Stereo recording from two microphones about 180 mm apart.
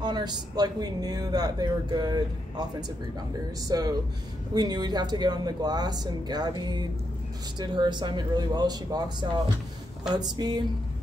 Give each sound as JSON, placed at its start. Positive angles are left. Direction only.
{"t": 0.0, "sound": "speech", "side_deg": -25}
{"t": 3.6, "sound": "speech", "side_deg": -20}